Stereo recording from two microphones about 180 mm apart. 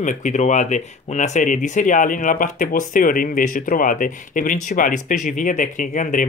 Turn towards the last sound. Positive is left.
turn(degrees=45)  # may be behind; listen again after turning